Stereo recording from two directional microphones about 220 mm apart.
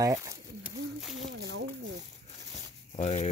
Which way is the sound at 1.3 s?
50° right (ahead or behind).